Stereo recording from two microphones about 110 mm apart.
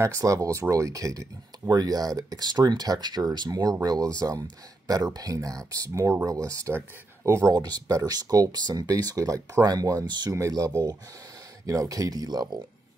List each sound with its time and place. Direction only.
0.0 s speech: 30° right (ahead or behind)
7.5 s speech: 40° right (ahead or behind)
10.3 s speech: 30° right (ahead or behind)